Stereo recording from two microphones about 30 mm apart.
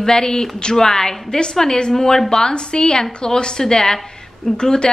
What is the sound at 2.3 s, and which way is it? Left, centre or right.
A woman's voice, left.